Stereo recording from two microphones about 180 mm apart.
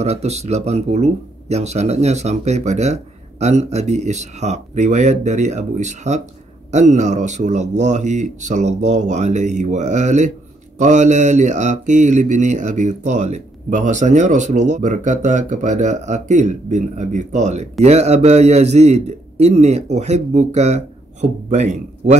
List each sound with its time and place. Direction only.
0.0 s speech: 35° right (ahead or behind)